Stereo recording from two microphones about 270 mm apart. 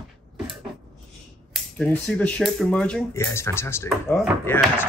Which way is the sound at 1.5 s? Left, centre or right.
Centre.